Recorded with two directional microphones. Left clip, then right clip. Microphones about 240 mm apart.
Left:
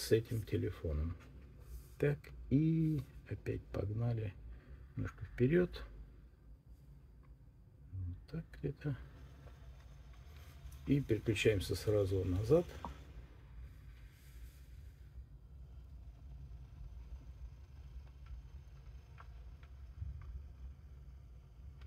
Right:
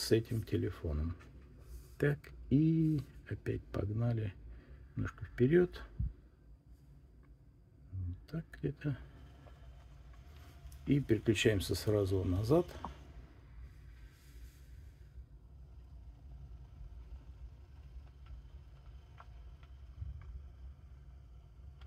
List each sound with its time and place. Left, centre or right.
0.0 s speech: centre
8.3 s speech: right
10.9 s speech: right